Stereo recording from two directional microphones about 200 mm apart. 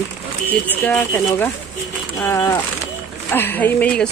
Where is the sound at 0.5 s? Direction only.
10° left (ahead or behind).